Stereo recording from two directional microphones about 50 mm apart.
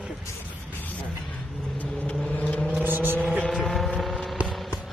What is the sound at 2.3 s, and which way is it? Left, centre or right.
Vehicle, left.